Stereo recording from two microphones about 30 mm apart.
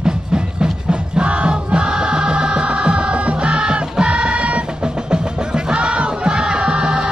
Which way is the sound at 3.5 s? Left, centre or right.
Right.